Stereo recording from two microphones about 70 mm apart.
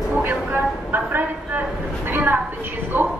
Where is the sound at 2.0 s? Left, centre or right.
Right.